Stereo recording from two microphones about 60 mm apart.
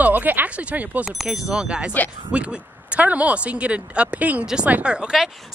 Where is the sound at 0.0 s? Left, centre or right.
Right.